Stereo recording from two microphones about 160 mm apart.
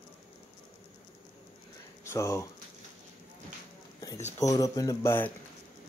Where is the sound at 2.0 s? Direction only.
20° left (ahead or behind).